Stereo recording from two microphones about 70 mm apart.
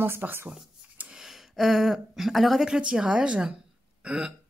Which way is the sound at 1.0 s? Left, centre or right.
Centre.